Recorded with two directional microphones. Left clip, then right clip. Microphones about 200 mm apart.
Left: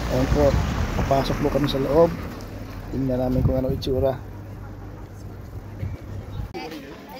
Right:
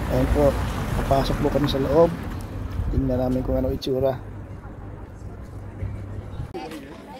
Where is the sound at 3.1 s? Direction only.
Centre (ahead or behind).